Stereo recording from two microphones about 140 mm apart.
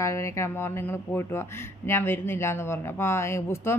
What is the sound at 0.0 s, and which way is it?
Speech, 20° left (ahead or behind).